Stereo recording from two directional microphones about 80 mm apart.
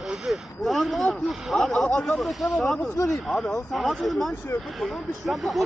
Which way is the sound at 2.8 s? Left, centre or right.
Left.